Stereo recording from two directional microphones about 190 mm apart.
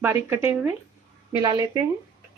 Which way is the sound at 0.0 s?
10° right (ahead or behind).